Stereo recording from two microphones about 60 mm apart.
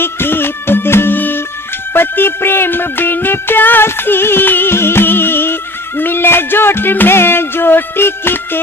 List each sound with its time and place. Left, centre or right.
0.0 s music: left